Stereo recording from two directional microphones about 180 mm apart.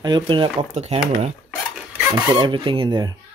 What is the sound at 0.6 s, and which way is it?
Speech, 40° right (ahead or behind).